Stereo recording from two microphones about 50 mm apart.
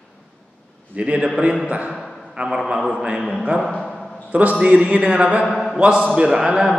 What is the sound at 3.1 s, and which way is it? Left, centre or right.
A man's voice, right.